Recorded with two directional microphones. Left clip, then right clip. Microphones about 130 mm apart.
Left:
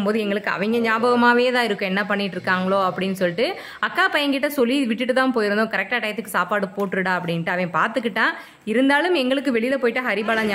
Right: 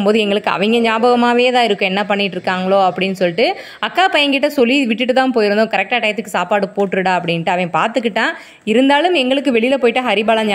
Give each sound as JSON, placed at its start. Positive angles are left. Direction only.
{"t": 0.0, "sound": "a woman's voice", "side_deg": -30}